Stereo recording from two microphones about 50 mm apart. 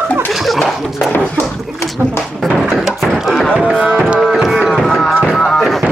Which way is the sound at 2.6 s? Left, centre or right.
Centre.